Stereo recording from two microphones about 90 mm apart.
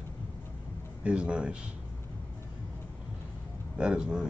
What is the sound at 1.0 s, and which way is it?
Speech, 10° right (ahead or behind).